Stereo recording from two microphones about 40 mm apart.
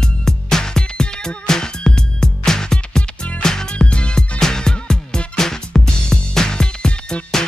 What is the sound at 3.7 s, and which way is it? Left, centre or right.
Music, left.